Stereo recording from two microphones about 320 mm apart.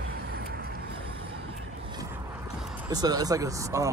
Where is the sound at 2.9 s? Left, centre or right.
Centre.